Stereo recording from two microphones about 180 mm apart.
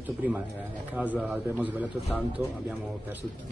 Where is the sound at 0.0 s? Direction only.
10° right (ahead or behind).